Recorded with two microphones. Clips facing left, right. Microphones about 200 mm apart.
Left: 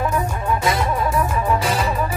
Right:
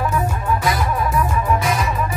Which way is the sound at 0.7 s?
30° left (ahead or behind).